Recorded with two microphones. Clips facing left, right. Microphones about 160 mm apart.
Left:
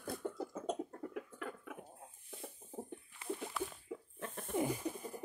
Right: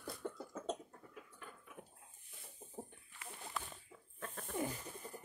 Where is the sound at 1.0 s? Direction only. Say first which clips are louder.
Left 11 dB; 75° left (ahead or behind).